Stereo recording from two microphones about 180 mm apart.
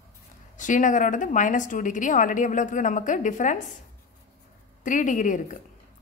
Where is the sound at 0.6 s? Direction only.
45° left (ahead or behind).